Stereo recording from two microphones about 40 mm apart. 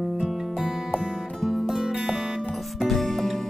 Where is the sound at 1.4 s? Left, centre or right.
Centre.